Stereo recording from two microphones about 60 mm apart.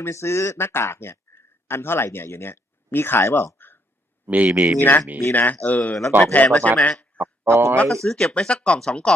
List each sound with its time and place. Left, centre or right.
0.0 s speech: left
3.5 s a sound: left
4.3 s speech: right
4.7 s speech: left
7.2 s a sound: right
7.9 s speech: centre